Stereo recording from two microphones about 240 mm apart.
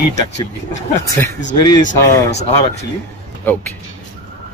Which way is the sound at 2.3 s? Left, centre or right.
Left.